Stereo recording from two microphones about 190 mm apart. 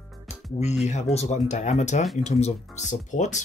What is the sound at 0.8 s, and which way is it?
Speech, 35° left (ahead or behind).